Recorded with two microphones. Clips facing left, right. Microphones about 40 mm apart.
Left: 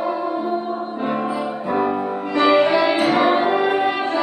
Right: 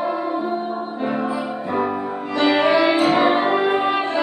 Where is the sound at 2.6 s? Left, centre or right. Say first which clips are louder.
Even; right.